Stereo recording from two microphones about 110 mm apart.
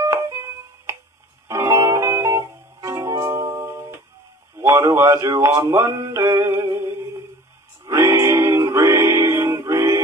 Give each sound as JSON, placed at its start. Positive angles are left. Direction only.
{"t": 0.0, "sound": "a sound", "side_deg": -25}
{"t": 1.5, "sound": "music", "side_deg": -25}
{"t": 4.6, "sound": "speech", "side_deg": -25}
{"t": 7.9, "sound": "music", "side_deg": -25}